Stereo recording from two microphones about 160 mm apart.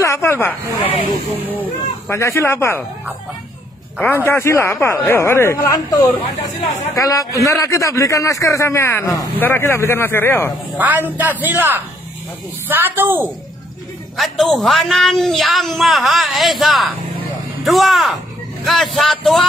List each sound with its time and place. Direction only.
0.0 s speech: 15° left (ahead or behind)
4.0 s speech: 10° left (ahead or behind)
10.8 s speech: 10° right (ahead or behind)
14.1 s a man's voice: centre (ahead or behind)